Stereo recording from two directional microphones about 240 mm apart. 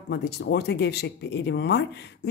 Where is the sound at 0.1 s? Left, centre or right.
Left.